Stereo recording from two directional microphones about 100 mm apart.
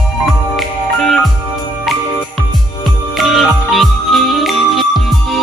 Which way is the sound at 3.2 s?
Centre (ahead or behind).